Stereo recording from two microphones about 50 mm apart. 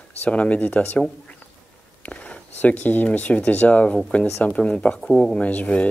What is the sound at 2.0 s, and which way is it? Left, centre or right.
Speech, left.